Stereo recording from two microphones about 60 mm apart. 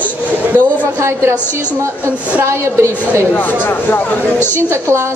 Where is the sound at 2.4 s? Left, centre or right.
Right.